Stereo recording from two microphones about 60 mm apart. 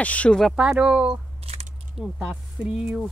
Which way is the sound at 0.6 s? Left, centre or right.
Centre.